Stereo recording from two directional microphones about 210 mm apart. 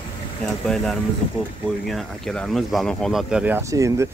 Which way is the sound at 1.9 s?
Centre (ahead or behind).